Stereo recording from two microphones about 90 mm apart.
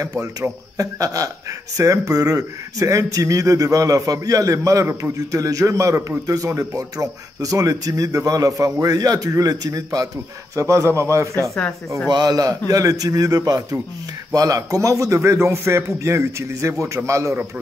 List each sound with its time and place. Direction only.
0.2 s a man's voice: 40° right (ahead or behind)
12.1 s speech: 45° right (ahead or behind)